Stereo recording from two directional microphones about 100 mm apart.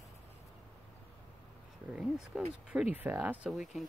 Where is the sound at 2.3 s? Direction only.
Centre (ahead or behind).